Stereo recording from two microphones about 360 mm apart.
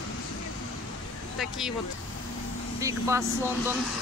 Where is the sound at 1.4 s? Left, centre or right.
Centre.